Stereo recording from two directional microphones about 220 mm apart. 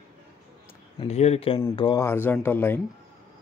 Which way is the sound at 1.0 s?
30° left (ahead or behind).